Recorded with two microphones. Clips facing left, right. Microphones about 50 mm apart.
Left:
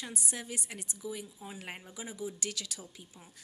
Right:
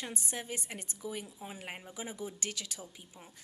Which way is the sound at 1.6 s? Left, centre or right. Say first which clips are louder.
Left 1 dB; centre.